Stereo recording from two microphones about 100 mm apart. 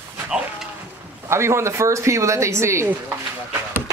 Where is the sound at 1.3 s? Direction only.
25° right (ahead or behind).